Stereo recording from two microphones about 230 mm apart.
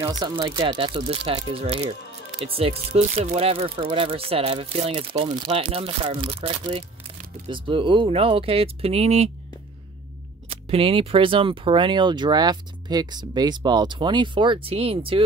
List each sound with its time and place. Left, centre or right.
0.2 s speech: centre
10.5 s speech: right